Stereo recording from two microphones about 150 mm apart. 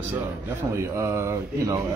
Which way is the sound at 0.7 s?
20° right (ahead or behind).